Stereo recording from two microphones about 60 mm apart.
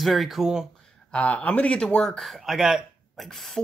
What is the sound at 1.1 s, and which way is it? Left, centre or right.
Speech, left.